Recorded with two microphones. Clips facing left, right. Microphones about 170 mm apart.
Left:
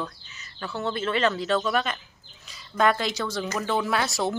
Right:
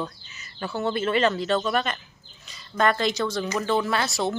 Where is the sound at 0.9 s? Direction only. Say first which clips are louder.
Right 2 dB; 5° right (ahead or behind).